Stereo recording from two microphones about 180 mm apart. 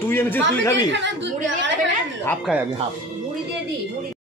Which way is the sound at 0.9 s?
90° right.